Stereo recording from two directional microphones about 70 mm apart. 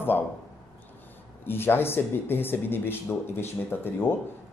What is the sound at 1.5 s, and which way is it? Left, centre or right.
A man's voice, left.